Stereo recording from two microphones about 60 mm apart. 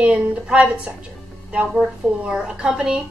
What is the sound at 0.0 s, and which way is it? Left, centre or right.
A woman's voice, right.